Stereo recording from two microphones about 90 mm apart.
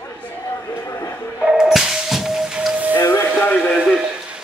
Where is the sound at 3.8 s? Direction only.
10° right (ahead or behind).